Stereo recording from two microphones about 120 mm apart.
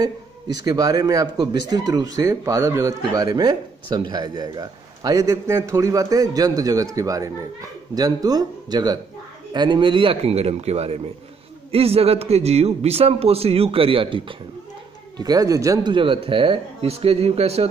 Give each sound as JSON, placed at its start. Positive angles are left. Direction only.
{"t": 0.7, "sound": "a man's voice", "side_deg": -30}
{"t": 15.1, "sound": "speech", "side_deg": -30}
{"t": 15.9, "sound": "speech", "side_deg": -45}